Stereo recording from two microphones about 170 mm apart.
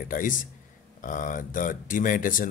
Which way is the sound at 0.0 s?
50° left (ahead or behind).